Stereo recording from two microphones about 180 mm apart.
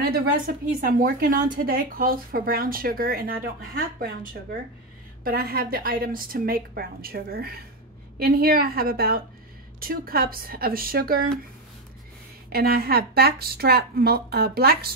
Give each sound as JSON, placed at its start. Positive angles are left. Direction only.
{"t": 0.0, "sound": "a sound", "side_deg": -60}
{"t": 0.7, "sound": "a woman's voice", "side_deg": -50}
{"t": 12.5, "sound": "a woman's voice", "side_deg": -60}